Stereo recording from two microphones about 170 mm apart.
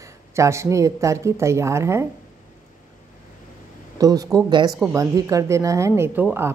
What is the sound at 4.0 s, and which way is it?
A woman's voice, 20° right (ahead or behind).